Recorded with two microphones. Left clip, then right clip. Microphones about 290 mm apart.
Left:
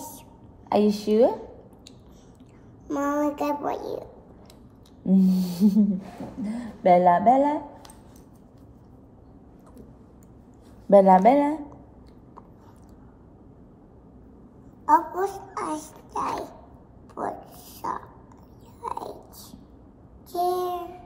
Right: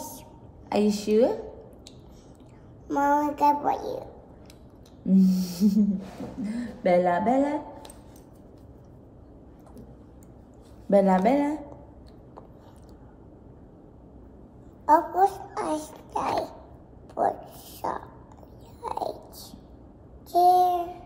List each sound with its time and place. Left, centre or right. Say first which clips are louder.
0.7 s a woman's voice: left 3 dB; centre
2.9 s a child's voice: right 2 dB; centre
5.0 s a woman's voice: left 1 dB; centre
10.9 s a woman's voice: left 6 dB; centre
14.9 s a child's voice: right 1 dB; centre
17.1 s whispering: right 6 dB; centre
18.8 s a sound: right 2 dB; centre
20.2 s child singing: right 7 dB; centre